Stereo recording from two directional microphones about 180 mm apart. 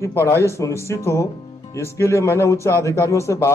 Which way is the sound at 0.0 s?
15° left (ahead or behind).